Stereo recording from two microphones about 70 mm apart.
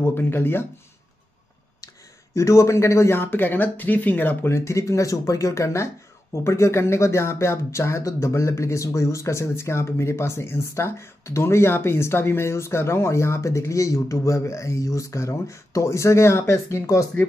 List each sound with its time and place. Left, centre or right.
0.0 s speech: left
2.3 s speech: left
4.5 s speech: left